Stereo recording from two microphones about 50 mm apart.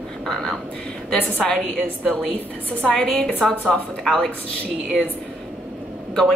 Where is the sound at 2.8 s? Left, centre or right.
Centre.